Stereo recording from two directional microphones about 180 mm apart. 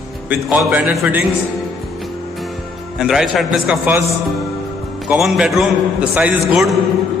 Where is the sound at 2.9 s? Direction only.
5° right (ahead or behind).